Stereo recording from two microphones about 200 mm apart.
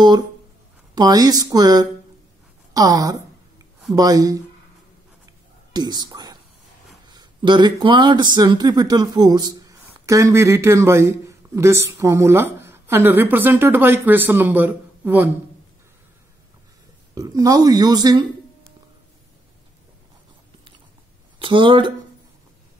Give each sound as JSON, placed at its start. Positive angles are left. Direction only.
{"t": 0.9, "sound": "speech", "side_deg": -20}
{"t": 5.7, "sound": "speech", "side_deg": -20}
{"t": 17.1, "sound": "speech", "side_deg": -20}
{"t": 21.4, "sound": "speech", "side_deg": -25}